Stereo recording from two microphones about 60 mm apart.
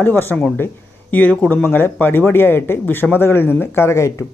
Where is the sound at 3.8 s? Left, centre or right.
Left.